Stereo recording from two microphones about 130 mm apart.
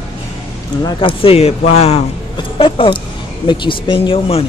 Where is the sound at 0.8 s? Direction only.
45° left (ahead or behind).